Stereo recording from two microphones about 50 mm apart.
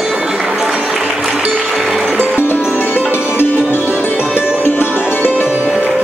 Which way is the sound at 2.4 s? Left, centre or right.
Left.